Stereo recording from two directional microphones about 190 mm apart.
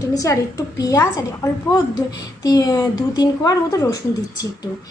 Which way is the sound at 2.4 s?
20° left (ahead or behind).